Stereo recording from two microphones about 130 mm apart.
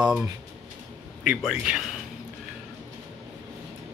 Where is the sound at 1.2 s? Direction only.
10° right (ahead or behind).